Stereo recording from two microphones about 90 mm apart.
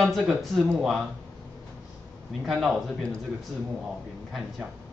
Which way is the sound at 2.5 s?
Centre (ahead or behind).